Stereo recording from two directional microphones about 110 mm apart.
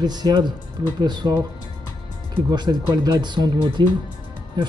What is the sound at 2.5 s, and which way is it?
Speech, 40° right (ahead or behind).